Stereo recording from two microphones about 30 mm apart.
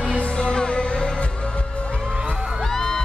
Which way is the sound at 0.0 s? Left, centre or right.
Left.